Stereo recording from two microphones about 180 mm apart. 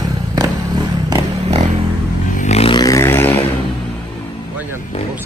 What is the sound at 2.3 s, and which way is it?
Vehicle, 40° left (ahead or behind).